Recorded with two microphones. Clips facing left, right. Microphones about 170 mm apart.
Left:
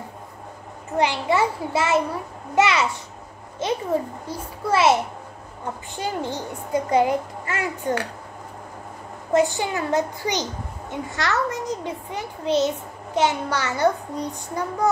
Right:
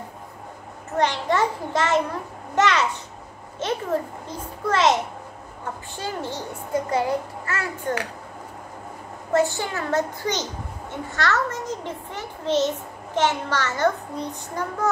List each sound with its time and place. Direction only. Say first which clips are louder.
0.9 s a child's voice: left 1 dB; 10° left (ahead or behind)
5.9 s a child's voice: left 3 dB; 15° left (ahead or behind)
9.3 s a child's voice: left 2 dB; 15° left (ahead or behind)